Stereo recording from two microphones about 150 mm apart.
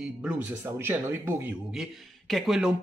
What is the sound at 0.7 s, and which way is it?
Speech, 15° right (ahead or behind).